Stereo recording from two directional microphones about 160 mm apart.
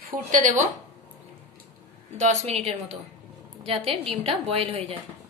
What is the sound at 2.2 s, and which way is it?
A woman's voice, 45° right (ahead or behind).